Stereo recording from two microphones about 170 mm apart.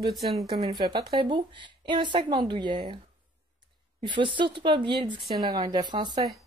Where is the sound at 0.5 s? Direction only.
25° right (ahead or behind).